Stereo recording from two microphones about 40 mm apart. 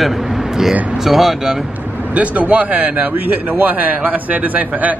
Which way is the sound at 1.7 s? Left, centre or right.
Right.